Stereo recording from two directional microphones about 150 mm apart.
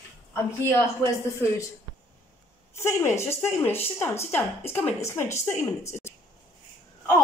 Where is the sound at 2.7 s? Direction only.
20° left (ahead or behind).